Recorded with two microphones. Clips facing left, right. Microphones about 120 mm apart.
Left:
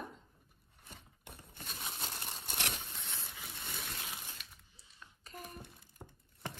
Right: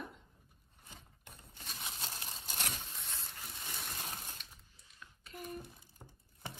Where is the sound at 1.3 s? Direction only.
60° left (ahead or behind).